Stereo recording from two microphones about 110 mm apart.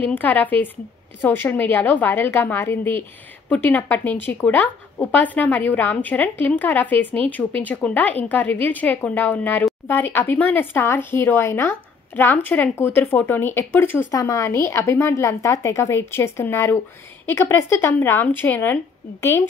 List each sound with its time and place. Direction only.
0.0 s a woman's voice: 15° left (ahead or behind)